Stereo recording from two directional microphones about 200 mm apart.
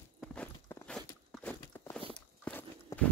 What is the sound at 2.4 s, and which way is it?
Biting, 10° left (ahead or behind).